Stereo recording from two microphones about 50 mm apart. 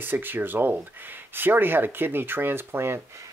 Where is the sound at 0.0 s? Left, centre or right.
Right.